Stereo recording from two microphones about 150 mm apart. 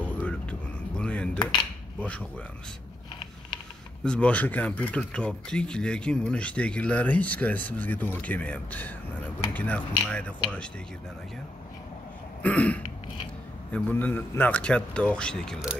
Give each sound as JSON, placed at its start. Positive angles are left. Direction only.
{"t": 0.0, "sound": "a sound", "side_deg": 10}
{"t": 1.4, "sound": "speech", "side_deg": 30}
{"t": 4.0, "sound": "speech", "side_deg": 5}
{"t": 12.4, "sound": "speech", "side_deg": 10}